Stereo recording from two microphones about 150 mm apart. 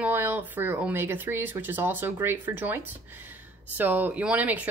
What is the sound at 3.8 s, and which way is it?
Speech, 10° right (ahead or behind).